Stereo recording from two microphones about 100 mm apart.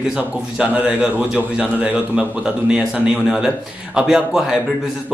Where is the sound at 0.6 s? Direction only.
15° right (ahead or behind).